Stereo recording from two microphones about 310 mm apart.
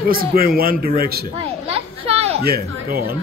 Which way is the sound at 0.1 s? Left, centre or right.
Right.